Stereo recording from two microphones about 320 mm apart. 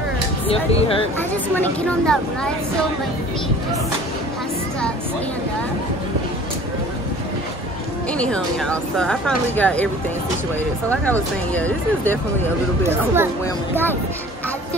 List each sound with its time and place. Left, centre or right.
0.5 s speech: centre
1.3 s speech: centre
8.1 s speech: centre
10.9 s speech: centre
12.8 s speech: centre